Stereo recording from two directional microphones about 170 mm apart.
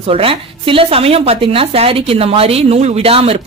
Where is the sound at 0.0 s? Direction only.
35° right (ahead or behind).